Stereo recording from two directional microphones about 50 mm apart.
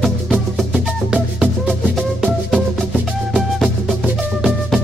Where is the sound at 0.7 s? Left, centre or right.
Centre.